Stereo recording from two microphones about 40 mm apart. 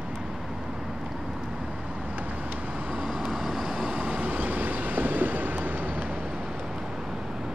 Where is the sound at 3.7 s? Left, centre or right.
Right.